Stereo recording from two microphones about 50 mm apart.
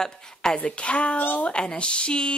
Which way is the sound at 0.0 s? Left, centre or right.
Centre.